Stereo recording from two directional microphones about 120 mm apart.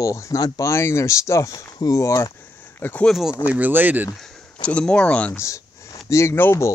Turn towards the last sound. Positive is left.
turn(degrees=20)  # may be behind; listen again after turning